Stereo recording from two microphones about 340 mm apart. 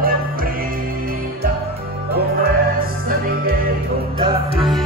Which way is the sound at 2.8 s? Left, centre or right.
Right.